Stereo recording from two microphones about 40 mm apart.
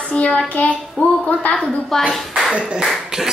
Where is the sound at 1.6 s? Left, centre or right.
Centre.